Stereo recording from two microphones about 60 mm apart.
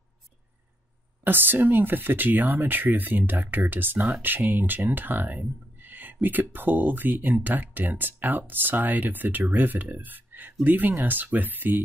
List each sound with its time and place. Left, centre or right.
1.2 s speech: right